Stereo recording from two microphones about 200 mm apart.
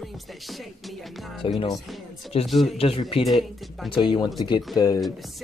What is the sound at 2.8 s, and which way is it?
Speech, 30° left (ahead or behind).